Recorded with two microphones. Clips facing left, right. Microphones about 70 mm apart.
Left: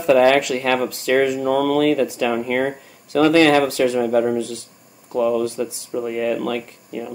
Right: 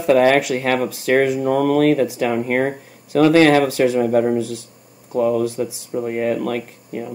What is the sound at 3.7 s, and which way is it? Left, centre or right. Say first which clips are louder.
Speech: right 1 dB; right.